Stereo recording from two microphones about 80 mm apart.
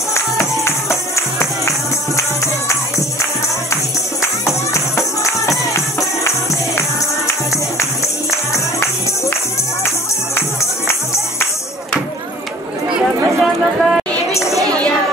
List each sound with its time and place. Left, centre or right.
0.1 s music: left
13.0 s chatter: centre